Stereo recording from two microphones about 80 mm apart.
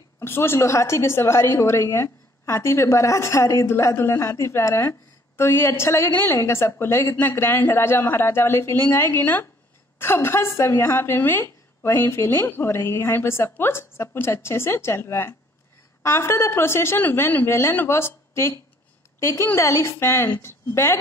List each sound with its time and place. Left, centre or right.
0.2 s a woman's voice: left